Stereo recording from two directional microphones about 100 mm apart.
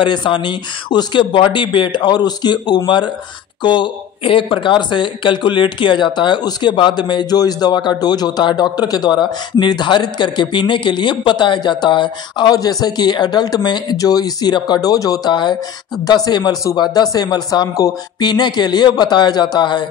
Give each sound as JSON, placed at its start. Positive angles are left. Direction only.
{"t": 0.0, "sound": "speech", "side_deg": 50}